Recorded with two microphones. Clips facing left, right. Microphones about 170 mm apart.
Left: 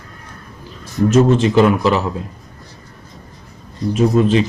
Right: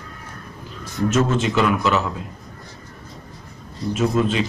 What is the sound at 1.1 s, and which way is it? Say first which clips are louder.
Speech: left 8 dB; 35° left (ahead or behind).